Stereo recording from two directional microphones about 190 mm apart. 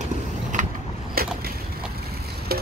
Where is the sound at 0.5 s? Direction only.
40° right (ahead or behind).